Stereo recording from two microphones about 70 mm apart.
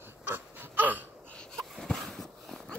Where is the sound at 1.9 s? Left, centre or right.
Centre.